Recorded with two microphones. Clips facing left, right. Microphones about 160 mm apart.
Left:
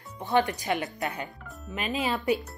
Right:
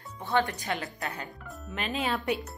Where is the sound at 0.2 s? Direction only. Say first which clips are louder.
Left 3 dB; 20° left (ahead or behind).